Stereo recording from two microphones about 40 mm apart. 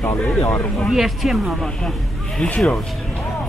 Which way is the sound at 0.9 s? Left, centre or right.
Centre.